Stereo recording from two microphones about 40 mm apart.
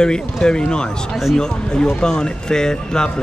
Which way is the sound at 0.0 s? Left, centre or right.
Centre.